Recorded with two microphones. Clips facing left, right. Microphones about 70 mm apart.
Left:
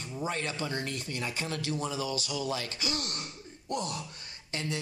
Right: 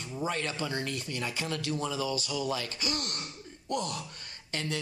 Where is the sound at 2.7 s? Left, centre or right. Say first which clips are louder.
Even; right.